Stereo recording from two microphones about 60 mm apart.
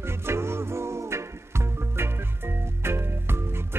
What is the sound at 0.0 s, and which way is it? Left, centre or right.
Music, right.